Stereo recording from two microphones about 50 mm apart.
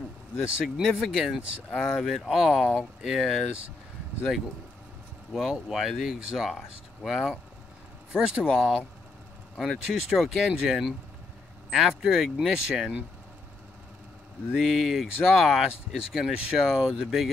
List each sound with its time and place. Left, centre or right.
0.4 s speech: centre
5.3 s speech: centre
9.6 s speech: centre
14.5 s speech: centre